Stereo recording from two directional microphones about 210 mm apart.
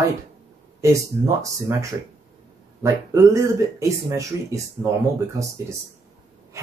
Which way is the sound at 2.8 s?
15° right (ahead or behind).